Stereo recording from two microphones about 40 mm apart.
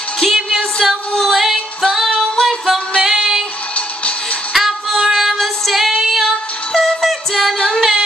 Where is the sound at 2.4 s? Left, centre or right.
Centre.